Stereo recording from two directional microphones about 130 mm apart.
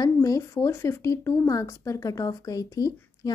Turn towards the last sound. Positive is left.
turn(degrees=30)  # may be behind; listen again after turning